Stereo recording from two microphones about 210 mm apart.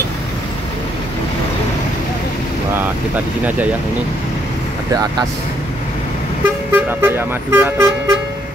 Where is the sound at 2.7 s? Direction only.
10° right (ahead or behind).